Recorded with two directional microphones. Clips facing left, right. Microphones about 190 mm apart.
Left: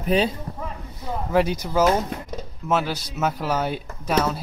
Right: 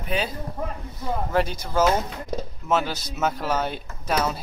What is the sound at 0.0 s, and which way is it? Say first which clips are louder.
Speech: left 6 dB; 35° left (ahead or behind).